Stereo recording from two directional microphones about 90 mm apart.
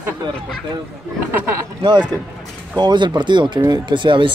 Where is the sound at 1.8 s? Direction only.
60° right (ahead or behind).